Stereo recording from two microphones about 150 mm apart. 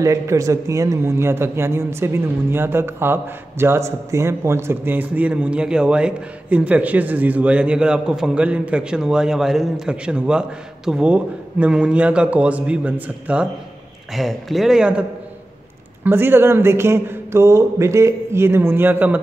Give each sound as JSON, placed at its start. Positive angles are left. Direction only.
{"t": 0.0, "sound": "a man's voice", "side_deg": -20}